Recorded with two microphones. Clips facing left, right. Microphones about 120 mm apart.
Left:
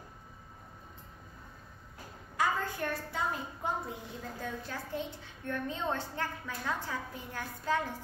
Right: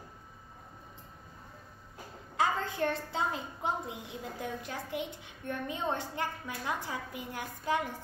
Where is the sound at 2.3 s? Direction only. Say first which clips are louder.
Right 1 dB; 25° right (ahead or behind).